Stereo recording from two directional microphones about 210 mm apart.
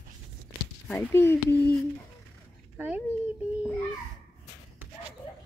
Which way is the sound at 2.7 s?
10° right (ahead or behind).